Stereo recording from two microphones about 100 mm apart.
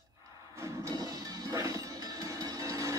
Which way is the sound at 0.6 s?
35° right (ahead or behind).